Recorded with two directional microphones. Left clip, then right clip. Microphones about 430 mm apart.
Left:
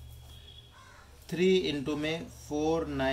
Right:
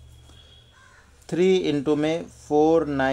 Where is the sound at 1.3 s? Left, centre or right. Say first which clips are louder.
Right 7 dB; centre.